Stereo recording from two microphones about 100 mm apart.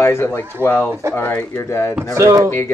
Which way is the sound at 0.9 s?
25° right (ahead or behind).